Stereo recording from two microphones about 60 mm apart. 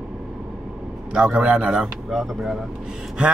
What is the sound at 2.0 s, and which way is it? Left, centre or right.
Speech, centre.